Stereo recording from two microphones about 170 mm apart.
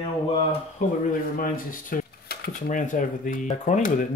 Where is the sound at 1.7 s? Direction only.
60° left (ahead or behind).